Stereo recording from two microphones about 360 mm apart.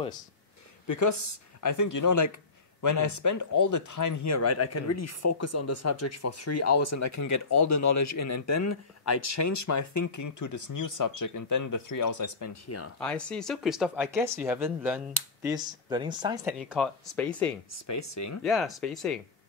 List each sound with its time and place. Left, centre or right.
0.8 s speech: left
13.0 s speech: centre
17.7 s speech: left
18.4 s speech: centre